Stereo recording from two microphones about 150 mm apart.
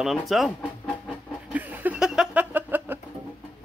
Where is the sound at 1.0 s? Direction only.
10° right (ahead or behind).